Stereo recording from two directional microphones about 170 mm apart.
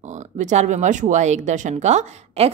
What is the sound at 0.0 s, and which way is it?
Speech, 45° right (ahead or behind).